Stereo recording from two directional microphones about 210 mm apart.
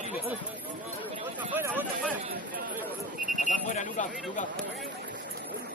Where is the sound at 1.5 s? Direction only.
10° right (ahead or behind).